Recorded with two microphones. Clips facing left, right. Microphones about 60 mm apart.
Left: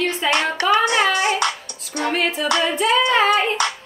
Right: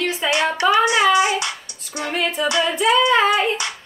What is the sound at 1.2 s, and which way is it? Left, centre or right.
Music, left.